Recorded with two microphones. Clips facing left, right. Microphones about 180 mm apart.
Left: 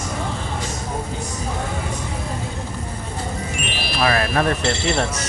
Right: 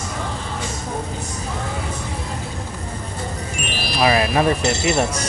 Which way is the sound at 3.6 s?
40° right (ahead or behind).